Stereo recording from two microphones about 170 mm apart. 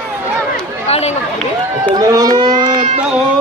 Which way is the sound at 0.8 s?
35° left (ahead or behind).